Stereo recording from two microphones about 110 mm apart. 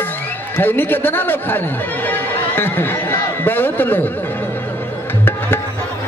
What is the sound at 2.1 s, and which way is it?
Music, 20° left (ahead or behind).